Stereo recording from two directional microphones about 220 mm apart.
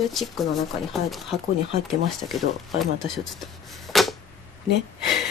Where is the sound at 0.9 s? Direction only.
Centre (ahead or behind).